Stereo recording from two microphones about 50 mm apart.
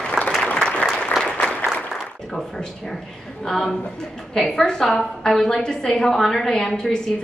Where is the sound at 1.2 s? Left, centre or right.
Left.